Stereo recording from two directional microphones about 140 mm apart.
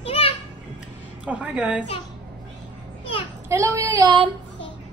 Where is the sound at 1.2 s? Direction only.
10° right (ahead or behind).